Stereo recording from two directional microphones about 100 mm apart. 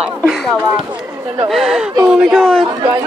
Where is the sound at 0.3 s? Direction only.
Centre (ahead or behind).